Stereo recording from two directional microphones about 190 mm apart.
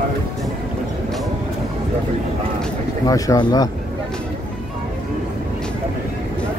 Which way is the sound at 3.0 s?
20° left (ahead or behind).